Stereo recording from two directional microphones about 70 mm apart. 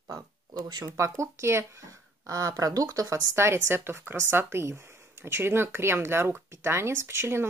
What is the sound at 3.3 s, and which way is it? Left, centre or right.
Speech, right.